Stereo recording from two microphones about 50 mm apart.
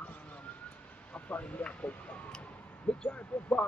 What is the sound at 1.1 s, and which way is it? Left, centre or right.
Speech, left.